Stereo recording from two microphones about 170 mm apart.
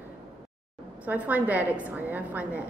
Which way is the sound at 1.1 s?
10° right (ahead or behind).